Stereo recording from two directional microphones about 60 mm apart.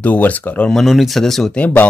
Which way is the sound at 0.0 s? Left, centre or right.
Left.